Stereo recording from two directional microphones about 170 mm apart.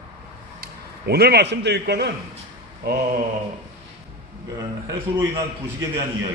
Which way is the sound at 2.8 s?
65° right (ahead or behind).